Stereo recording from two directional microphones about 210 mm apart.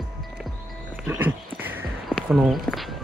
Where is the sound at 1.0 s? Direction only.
10° right (ahead or behind).